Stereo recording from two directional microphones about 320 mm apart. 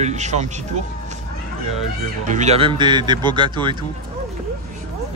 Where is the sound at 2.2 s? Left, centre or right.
Right.